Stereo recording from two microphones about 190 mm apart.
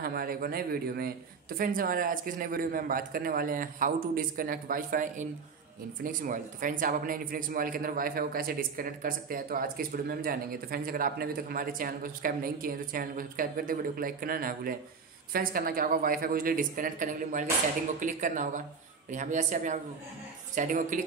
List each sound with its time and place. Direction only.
0.0 s a man's voice: 50° right (ahead or behind)